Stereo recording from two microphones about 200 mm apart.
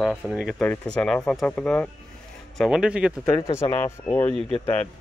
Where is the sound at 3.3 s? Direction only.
20° left (ahead or behind).